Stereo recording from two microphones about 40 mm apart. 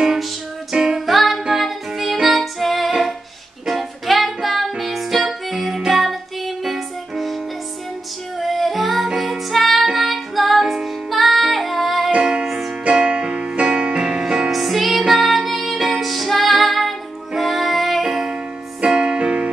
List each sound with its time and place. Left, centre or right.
0.0 s music: centre
1.0 s music: centre
8.4 s music: centre
12.8 s music: right
14.5 s music: centre
18.0 s music: centre
18.8 s keyboard: centre